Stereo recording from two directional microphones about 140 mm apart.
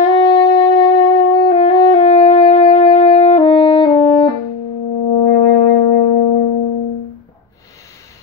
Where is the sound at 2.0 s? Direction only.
50° left (ahead or behind).